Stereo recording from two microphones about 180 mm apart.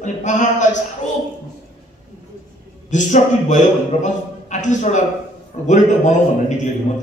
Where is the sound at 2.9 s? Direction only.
45° left (ahead or behind).